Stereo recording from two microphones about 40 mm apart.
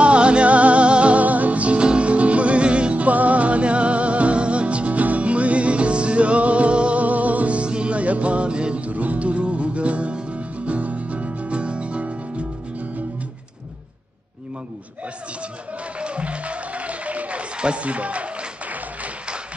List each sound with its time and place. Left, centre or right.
0.0 s music: right
16.0 s music: right